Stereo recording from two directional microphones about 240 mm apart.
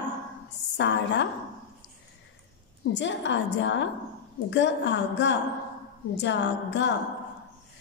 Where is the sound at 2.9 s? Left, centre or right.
Left.